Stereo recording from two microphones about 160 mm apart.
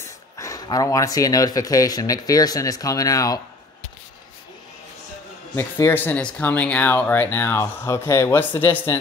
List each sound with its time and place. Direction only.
0.0 s speech: 20° left (ahead or behind)
5.6 s speech: 15° left (ahead or behind)